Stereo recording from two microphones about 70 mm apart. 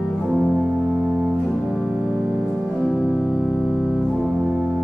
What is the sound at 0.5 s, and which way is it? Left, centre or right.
Music, centre.